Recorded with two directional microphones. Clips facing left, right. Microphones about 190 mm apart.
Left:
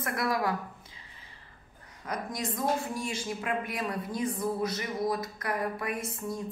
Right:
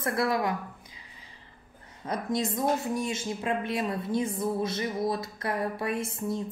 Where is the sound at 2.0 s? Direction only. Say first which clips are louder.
Right 5 dB; 25° right (ahead or behind).